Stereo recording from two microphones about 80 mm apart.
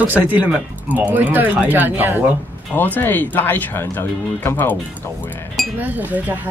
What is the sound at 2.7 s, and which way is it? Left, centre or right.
Speech, left.